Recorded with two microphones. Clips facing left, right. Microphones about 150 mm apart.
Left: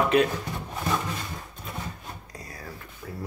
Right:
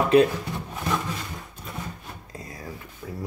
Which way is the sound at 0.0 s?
30° right (ahead or behind).